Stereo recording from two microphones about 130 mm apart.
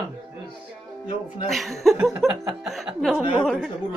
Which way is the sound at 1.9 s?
20° right (ahead or behind).